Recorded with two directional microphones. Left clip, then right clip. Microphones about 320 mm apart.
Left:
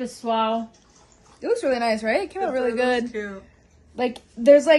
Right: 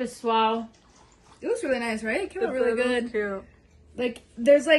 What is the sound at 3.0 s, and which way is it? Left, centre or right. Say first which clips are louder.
Speech: right 3 dB; centre.